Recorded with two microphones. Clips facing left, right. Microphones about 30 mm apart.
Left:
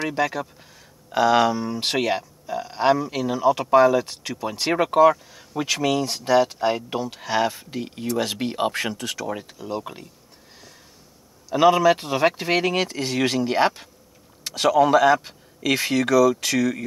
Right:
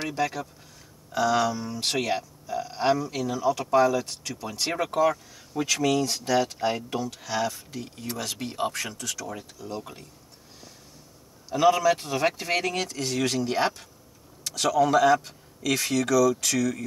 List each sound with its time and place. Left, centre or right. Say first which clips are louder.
0.1 s speech: left 4 dB; left
1.1 s speech: left 6 dB; left
11.5 s speech: left 4 dB; left